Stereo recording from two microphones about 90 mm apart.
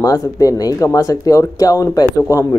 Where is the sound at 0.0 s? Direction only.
40° left (ahead or behind).